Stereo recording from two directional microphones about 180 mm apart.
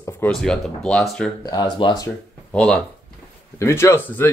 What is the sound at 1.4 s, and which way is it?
Speech, 25° left (ahead or behind).